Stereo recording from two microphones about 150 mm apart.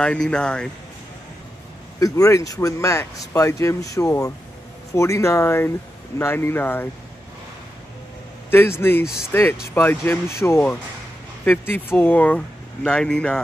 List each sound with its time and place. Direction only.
0.0 s speech: 5° left (ahead or behind)
2.0 s speech: 20° left (ahead or behind)
8.5 s speech: 15° left (ahead or behind)
9.0 s speech: 5° right (ahead or behind)
9.3 s speech: 15° left (ahead or behind)